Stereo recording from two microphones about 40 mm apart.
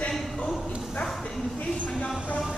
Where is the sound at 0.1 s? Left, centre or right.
Centre.